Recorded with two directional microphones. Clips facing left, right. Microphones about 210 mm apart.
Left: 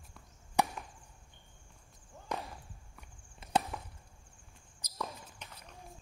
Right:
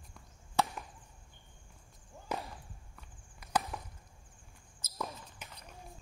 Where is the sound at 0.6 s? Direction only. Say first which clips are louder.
Left 1 dB; 15° left (ahead or behind).